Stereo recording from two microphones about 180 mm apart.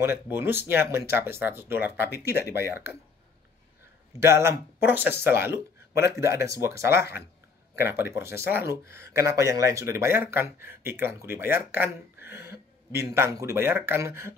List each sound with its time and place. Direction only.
0.0 s speech: 15° right (ahead or behind)
2.4 s speech: 60° left (ahead or behind)
4.2 s speech: 15° right (ahead or behind)